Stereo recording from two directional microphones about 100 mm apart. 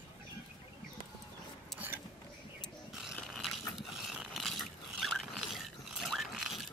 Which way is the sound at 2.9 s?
5° right (ahead or behind).